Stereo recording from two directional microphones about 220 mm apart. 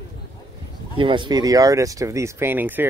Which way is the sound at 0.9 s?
20° right (ahead or behind).